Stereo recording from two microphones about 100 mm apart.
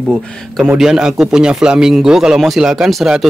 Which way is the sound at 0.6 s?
5° right (ahead or behind).